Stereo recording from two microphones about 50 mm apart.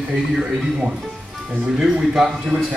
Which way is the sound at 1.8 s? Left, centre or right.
Centre.